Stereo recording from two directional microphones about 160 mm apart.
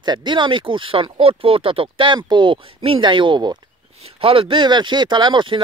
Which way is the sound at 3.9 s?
40° right (ahead or behind).